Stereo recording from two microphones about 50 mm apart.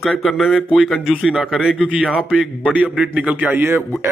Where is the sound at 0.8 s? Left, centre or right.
Centre.